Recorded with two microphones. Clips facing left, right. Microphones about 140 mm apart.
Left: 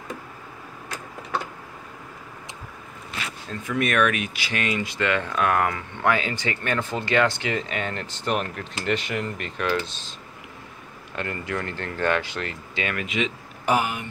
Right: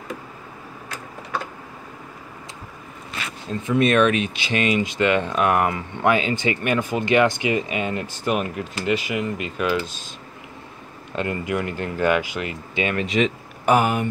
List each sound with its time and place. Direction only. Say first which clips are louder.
3.4 s speech: right 7 dB; 25° right (ahead or behind)
11.1 s speech: right 5 dB; 15° right (ahead or behind)
13.0 s speech: right 7 dB; 40° right (ahead or behind)
13.7 s speech: right 5 dB; 50° right (ahead or behind)